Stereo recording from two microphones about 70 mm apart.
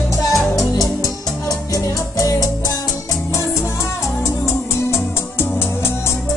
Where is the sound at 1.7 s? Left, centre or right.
Left.